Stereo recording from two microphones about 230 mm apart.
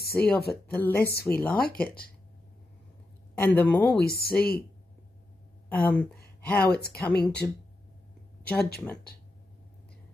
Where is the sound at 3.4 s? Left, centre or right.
Centre.